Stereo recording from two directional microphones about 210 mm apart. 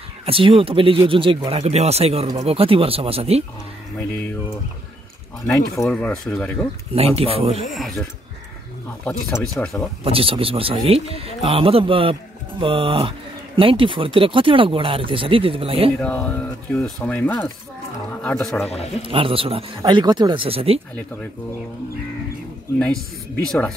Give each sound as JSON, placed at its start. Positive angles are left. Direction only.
{"t": 0.2, "sound": "speech", "side_deg": -25}
{"t": 5.9, "sound": "speech", "side_deg": 5}
{"t": 6.9, "sound": "speech", "side_deg": -30}
{"t": 7.7, "sound": "speech", "side_deg": 0}
{"t": 9.4, "sound": "speech", "side_deg": 5}
{"t": 10.0, "sound": "speech", "side_deg": -25}
{"t": 16.0, "sound": "speech", "side_deg": 5}
{"t": 19.0, "sound": "speech", "side_deg": -25}
{"t": 22.8, "sound": "speech", "side_deg": 5}